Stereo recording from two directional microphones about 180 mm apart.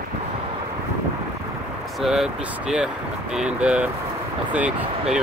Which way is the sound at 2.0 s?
5° right (ahead or behind).